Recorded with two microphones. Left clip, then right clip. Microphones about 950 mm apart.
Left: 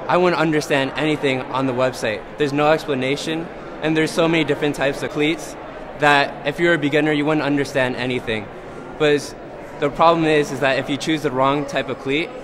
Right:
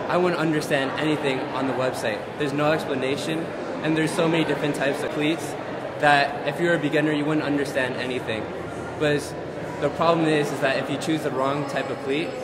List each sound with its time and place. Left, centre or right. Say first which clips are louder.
0.1 s a man's voice: left 6 dB; left